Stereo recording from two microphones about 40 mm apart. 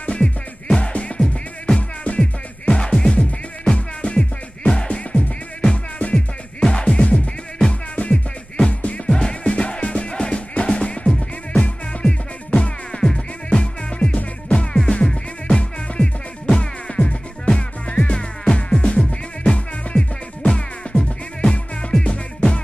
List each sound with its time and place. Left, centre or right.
0.0 s music: left
2.7 s music: left
3.2 s music: left
6.1 s music: centre
7.9 s music: left
9.0 s music: centre
12.5 s music: left